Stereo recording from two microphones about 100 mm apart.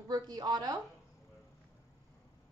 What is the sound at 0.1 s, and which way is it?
Speech, 45° right (ahead or behind).